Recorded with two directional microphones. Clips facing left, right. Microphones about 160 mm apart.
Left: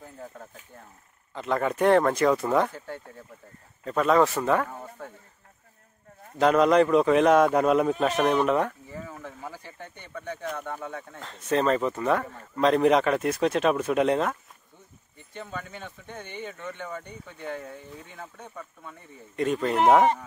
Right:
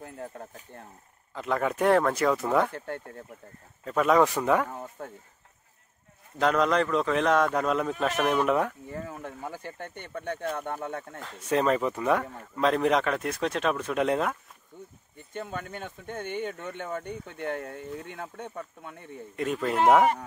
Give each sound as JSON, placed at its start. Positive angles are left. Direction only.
{"t": 1.3, "sound": "speech", "side_deg": -5}
{"t": 3.8, "sound": "speech", "side_deg": -5}
{"t": 6.3, "sound": "a man's voice", "side_deg": 5}
{"t": 8.5, "sound": "speech", "side_deg": -5}
{"t": 9.5, "sound": "speech", "side_deg": -50}
{"t": 10.5, "sound": "speech", "side_deg": -20}
{"t": 11.1, "sound": "speech", "side_deg": -10}
{"t": 15.7, "sound": "speech", "side_deg": -50}
{"t": 19.3, "sound": "speech", "side_deg": -5}